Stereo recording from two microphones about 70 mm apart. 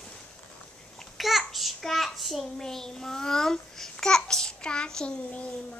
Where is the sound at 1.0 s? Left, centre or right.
Centre.